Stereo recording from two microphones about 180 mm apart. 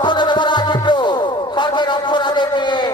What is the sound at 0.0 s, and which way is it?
Music, 25° left (ahead or behind).